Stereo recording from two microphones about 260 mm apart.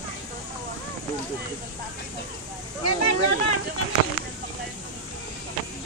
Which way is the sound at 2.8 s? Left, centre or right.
Left.